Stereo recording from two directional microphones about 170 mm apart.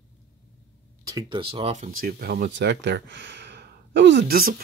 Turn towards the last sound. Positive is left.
turn(degrees=-60)  # may be behind; listen again after turning